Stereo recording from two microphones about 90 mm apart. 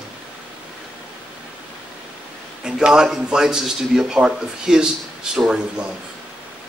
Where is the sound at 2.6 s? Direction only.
10° right (ahead or behind).